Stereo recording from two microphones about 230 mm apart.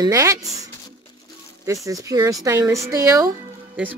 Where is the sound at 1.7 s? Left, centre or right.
Centre.